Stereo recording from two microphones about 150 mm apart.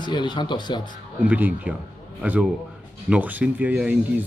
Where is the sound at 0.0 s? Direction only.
30° left (ahead or behind).